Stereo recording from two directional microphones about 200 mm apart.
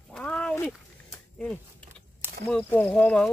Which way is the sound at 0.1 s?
5° left (ahead or behind).